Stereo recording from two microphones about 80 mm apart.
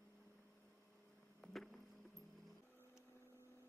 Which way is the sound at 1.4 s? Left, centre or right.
Centre.